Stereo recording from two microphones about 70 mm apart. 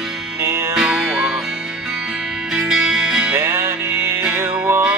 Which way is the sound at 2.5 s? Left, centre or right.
Centre.